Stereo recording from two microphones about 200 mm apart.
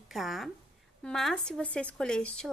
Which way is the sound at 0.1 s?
Centre (ahead or behind).